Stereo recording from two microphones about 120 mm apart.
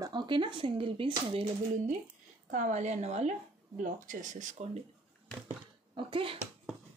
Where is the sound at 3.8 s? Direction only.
90° right.